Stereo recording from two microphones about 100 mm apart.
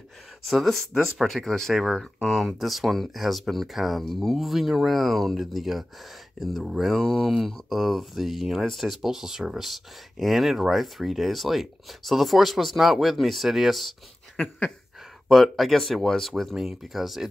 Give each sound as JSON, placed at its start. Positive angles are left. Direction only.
{"t": 0.5, "sound": "speech", "side_deg": 0}